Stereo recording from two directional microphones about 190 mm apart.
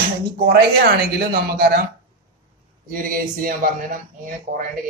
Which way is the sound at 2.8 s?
50° right (ahead or behind).